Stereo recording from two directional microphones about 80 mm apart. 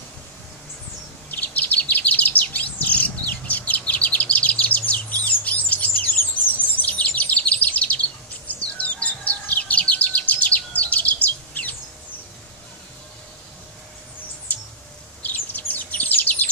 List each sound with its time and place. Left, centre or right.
1.3 s chirp: left
6.7 s bird vocalization: centre
8.5 s chirp: centre
11.2 s bird: centre
15.2 s bird: left